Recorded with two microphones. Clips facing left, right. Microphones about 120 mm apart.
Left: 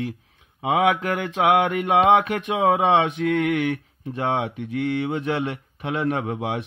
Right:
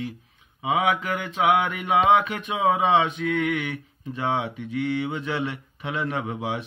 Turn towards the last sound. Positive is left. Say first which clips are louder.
# left 3 dB
turn(degrees=55)  # may be behind; listen again after turning